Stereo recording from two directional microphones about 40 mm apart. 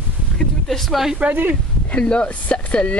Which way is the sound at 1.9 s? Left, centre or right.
Left.